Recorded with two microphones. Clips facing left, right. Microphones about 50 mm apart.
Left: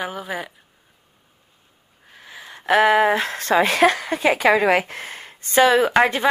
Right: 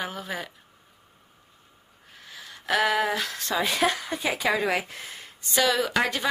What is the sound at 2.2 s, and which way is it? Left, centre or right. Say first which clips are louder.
Speech: left 8 dB; left.